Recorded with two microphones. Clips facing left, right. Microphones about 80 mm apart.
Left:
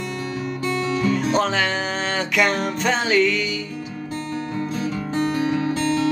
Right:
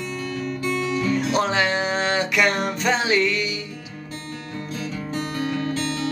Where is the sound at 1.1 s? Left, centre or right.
Centre.